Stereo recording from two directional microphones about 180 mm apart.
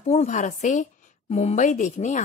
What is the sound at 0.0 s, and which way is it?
A woman's voice, 40° left (ahead or behind).